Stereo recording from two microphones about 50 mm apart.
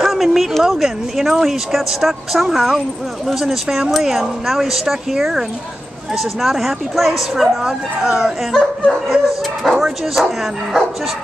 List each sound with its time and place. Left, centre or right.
0.0 s speech: centre
6.4 s speech: centre